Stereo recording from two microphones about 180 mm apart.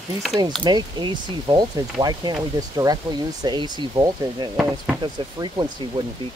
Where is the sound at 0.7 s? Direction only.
25° right (ahead or behind).